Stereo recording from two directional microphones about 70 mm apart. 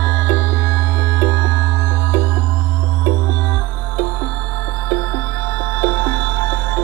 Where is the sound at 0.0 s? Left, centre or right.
Left.